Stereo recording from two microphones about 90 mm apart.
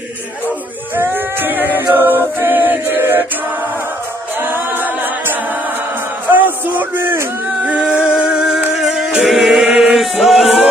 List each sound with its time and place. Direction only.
0.9 s a sound: 20° right (ahead or behind)
4.4 s a capella: 20° right (ahead or behind)
6.2 s a sound: 20° right (ahead or behind)
7.9 s singing: 10° right (ahead or behind)
9.7 s chant: 15° right (ahead or behind)
9.9 s chant: centre (ahead or behind)